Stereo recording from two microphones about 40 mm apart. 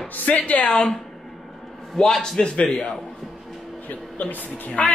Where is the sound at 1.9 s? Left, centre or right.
Centre.